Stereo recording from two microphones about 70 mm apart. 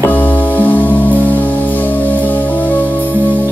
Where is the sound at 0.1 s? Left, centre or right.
Left.